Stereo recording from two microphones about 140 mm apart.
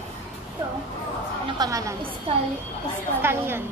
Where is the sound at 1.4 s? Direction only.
30° right (ahead or behind).